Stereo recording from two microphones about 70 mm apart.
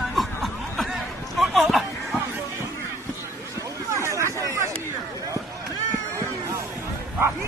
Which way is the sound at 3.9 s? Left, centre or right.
Right.